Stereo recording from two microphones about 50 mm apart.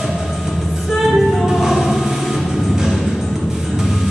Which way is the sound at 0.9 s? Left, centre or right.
Centre.